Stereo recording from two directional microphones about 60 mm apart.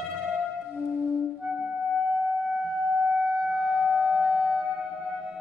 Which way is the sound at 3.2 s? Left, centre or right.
Centre.